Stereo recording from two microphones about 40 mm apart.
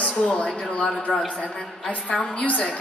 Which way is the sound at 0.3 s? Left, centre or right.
Left.